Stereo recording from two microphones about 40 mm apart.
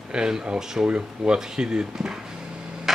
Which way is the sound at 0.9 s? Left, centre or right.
Right.